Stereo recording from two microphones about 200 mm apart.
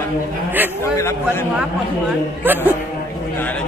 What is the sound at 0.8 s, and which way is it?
Speech, 15° left (ahead or behind).